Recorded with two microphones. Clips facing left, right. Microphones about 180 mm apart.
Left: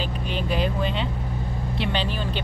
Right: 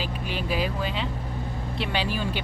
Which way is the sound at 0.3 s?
5° right (ahead or behind).